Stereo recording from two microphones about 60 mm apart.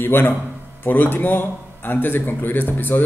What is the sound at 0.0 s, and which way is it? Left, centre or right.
A man's voice, left.